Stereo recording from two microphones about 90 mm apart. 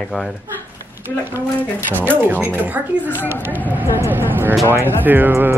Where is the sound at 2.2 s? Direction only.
20° right (ahead or behind).